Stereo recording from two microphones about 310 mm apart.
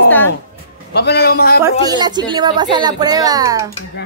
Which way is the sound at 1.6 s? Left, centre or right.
Centre.